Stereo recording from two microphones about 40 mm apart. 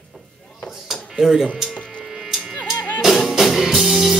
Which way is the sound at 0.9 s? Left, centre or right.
Centre.